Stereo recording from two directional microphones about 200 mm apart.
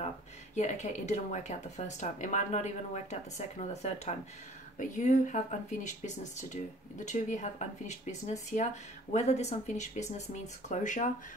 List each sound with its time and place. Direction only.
0.6 s speech: 35° left (ahead or behind)